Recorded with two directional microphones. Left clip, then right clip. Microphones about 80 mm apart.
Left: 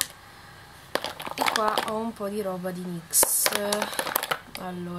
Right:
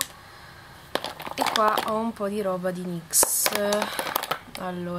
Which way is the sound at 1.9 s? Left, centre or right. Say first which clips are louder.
Right 3 dB; right.